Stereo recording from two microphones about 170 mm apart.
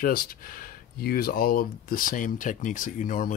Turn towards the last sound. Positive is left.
turn(degrees=50)  # may be behind; listen again after turning